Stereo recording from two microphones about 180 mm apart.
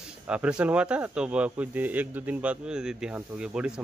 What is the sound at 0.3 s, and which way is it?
Speech, 5° right (ahead or behind).